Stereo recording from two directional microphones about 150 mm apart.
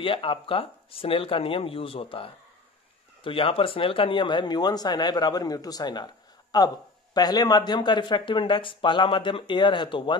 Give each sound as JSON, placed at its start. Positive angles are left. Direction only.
{"t": 0.0, "sound": "speech", "side_deg": 35}